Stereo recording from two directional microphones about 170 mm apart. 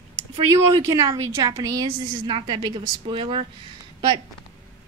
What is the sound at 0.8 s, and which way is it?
A woman's voice, 20° right (ahead or behind).